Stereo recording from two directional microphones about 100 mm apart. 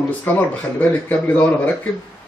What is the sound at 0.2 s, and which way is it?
Speech, 20° left (ahead or behind).